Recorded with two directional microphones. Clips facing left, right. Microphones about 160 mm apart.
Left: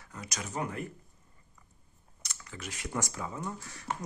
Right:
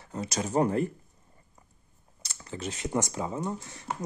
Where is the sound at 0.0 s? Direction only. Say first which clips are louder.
Right 9 dB; 30° right (ahead or behind).